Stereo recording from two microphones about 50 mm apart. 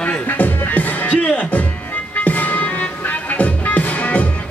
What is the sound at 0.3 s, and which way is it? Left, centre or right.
Music, left.